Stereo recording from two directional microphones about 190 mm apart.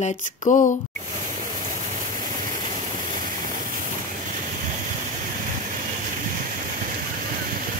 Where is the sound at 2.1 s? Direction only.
45° right (ahead or behind).